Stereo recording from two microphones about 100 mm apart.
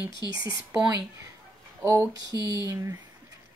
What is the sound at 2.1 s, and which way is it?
Speech, 40° right (ahead or behind).